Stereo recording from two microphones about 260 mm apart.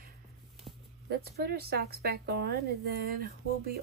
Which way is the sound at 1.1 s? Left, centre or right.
Right.